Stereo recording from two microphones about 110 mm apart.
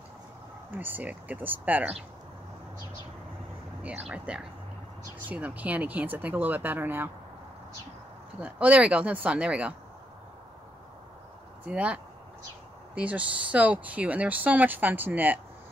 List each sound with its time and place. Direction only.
0.7 s speech: 15° right (ahead or behind)
3.8 s speech: 10° right (ahead or behind)
8.4 s speech: 15° right (ahead or behind)
11.6 s speech: 10° right (ahead or behind)